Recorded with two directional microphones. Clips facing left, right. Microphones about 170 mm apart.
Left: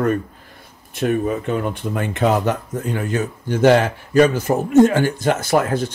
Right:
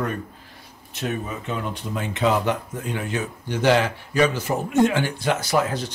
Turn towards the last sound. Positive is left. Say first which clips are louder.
# left 5 dB
turn(degrees=50)  # may be behind; listen again after turning